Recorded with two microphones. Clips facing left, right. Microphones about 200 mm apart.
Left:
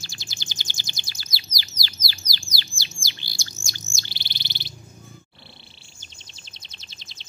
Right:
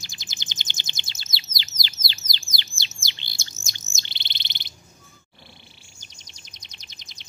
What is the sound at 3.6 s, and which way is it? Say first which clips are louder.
Chirp: left 4 dB; 20° right (ahead or behind).